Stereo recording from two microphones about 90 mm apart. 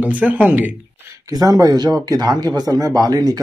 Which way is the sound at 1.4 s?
45° right (ahead or behind).